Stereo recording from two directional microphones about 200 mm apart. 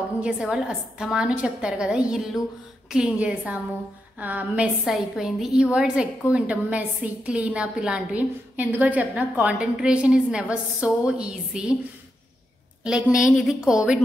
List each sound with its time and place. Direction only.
0.2 s a woman's voice: 5° right (ahead or behind)
12.8 s a woman's voice: 5° right (ahead or behind)